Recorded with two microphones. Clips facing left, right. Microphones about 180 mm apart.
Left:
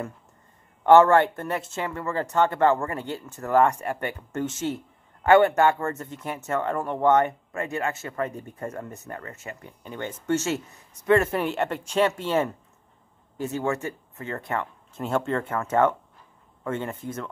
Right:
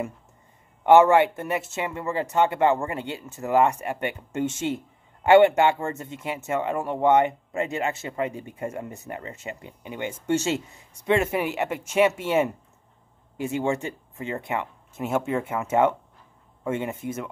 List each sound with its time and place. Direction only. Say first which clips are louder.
0.8 s a man's voice: even; 10° right (ahead or behind)